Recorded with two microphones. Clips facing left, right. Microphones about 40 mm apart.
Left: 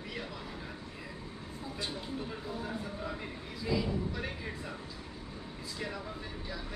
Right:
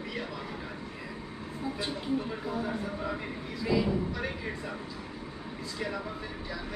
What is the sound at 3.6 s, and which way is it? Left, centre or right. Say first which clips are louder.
Speech: right 5 dB; centre.